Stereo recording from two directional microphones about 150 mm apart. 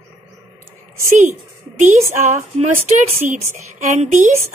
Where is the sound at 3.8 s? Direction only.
55° right (ahead or behind).